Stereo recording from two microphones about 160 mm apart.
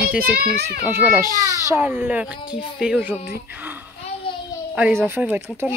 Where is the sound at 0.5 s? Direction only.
85° right.